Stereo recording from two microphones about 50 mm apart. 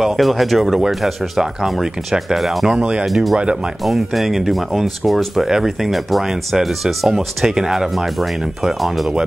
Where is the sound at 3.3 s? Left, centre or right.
Centre.